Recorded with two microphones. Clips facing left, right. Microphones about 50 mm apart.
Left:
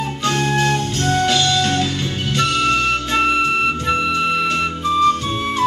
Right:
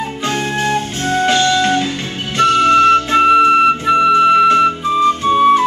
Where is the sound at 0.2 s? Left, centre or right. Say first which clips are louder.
Left 1 dB; centre.